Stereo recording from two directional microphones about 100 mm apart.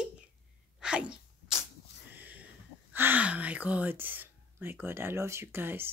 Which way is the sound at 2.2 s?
15° right (ahead or behind).